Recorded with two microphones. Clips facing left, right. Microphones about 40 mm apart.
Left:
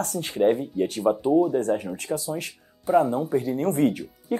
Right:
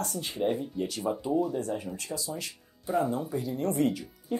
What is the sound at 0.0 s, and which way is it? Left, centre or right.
Speech, left.